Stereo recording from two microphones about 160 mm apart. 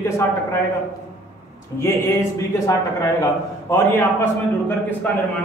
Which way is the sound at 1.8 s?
15° left (ahead or behind).